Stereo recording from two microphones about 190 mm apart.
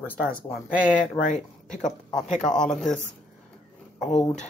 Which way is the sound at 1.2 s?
40° left (ahead or behind).